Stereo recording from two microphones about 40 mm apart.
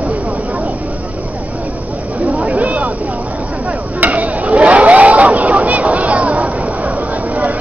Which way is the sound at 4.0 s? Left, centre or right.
Right.